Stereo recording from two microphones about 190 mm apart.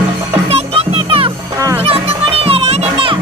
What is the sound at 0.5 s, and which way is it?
Music, 30° right (ahead or behind).